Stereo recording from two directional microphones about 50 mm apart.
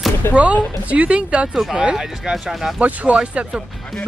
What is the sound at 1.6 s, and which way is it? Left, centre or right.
Speech, centre.